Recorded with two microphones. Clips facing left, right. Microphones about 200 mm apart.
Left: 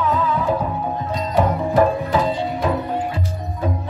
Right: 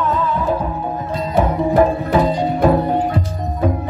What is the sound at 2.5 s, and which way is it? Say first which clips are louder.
Music: right 7 dB; 55° right (ahead or behind).